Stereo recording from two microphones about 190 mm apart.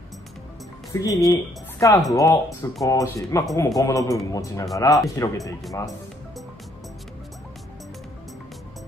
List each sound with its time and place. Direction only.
0.9 s a woman's voice: 20° left (ahead or behind)